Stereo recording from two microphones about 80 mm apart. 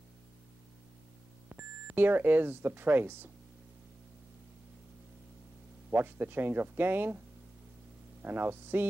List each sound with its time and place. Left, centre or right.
1.5 s speech: right
5.9 s speech: right
8.2 s speech: right